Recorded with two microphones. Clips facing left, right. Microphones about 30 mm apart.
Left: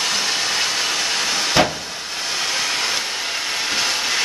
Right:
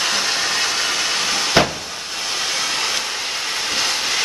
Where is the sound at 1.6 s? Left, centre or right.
Centre.